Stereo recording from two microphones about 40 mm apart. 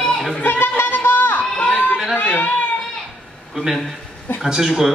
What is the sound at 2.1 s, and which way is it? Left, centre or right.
Speech, left.